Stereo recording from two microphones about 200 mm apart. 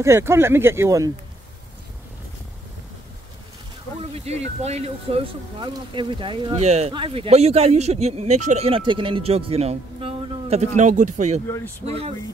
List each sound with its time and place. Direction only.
0.0 s speech: 15° right (ahead or behind)
4.1 s speech: 30° right (ahead or behind)
11.4 s speech: 15° left (ahead or behind)
11.8 s speech: 30° right (ahead or behind)